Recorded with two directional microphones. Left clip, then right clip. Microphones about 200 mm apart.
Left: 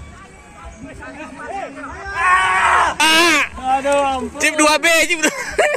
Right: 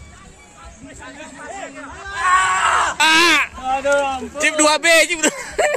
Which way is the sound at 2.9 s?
Centre (ahead or behind).